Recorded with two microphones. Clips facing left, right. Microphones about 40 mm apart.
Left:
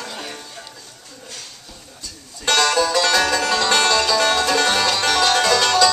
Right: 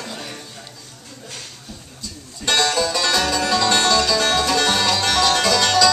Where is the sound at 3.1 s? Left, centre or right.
Centre.